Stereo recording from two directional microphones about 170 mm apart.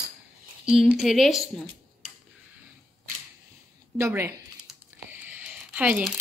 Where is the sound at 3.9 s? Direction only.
15° right (ahead or behind).